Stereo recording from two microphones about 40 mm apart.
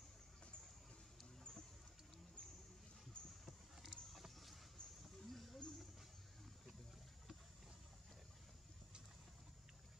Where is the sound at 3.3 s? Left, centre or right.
Centre.